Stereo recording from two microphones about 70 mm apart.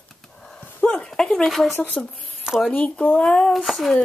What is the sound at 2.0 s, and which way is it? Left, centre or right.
Speech, centre.